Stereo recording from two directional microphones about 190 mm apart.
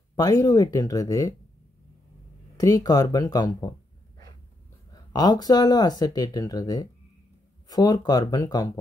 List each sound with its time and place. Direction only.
0.1 s speech: 20° left (ahead or behind)
2.5 s speech: 20° left (ahead or behind)
4.9 s speech: 20° left (ahead or behind)